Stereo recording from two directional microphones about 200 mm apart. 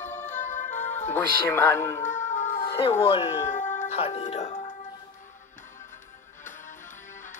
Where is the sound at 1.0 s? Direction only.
10° left (ahead or behind).